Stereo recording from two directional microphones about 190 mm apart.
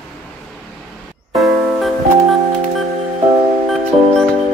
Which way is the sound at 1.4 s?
Centre (ahead or behind).